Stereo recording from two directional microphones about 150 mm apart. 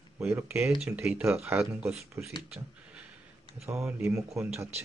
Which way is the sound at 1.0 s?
15° right (ahead or behind).